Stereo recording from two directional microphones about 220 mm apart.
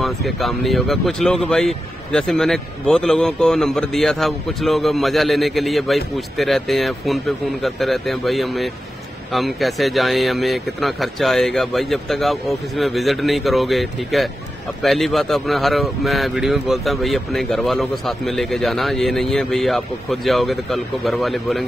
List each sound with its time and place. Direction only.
0.0 s speech: centre (ahead or behind)